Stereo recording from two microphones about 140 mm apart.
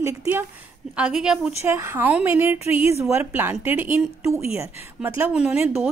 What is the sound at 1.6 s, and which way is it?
Speech, 15° right (ahead or behind).